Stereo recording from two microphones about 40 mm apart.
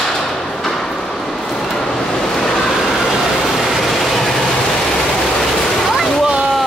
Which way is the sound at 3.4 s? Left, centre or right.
Centre.